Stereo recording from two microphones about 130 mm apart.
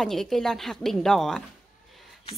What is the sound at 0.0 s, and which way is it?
Speech, centre (ahead or behind).